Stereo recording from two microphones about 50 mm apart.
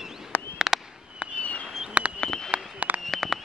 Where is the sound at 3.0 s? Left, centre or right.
Centre.